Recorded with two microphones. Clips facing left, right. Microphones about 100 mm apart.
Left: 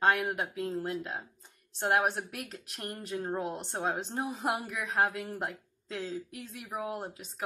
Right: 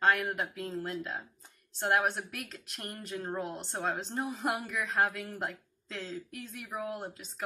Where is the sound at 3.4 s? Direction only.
5° left (ahead or behind).